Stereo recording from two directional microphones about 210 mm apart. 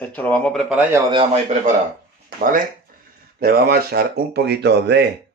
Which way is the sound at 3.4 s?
45° right (ahead or behind).